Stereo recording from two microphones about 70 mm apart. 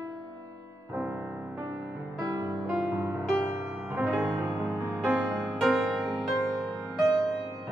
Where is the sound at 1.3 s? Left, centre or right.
Centre.